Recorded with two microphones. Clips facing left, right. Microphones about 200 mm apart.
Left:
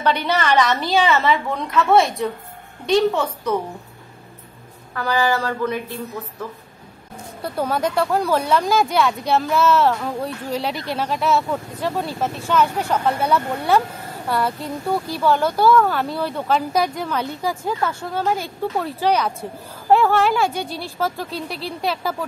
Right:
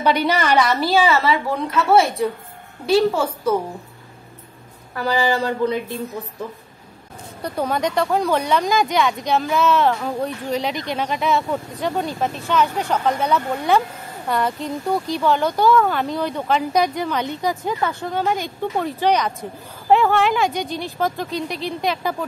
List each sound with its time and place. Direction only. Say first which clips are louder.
0.0 s a woman's voice: right 2 dB; 10° right (ahead or behind)
4.9 s a woman's voice: even; 15° right (ahead or behind)
7.4 s speech: even; 5° left (ahead or behind)